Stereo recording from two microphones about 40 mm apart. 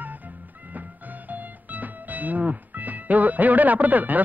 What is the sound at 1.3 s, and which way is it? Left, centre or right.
Music, right.